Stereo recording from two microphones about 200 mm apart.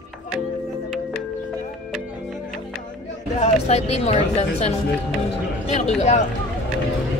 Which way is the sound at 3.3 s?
35° left (ahead or behind).